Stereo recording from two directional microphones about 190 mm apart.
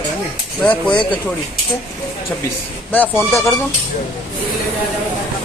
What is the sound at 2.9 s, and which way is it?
Speech, 10° left (ahead or behind).